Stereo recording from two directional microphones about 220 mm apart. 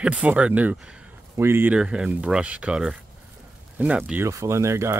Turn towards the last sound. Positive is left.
turn(degrees=-15)  # may be behind; listen again after turning